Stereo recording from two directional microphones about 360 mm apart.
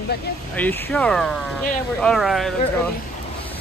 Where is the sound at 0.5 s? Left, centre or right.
Centre.